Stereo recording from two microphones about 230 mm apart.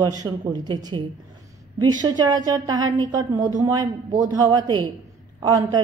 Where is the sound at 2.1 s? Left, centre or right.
Centre.